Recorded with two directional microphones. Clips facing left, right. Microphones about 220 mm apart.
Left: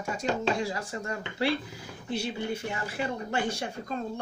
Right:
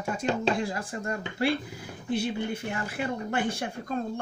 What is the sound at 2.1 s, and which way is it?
Speech, 55° right (ahead or behind).